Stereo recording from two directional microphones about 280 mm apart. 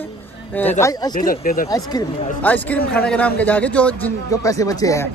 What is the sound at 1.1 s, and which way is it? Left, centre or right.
Speech, left.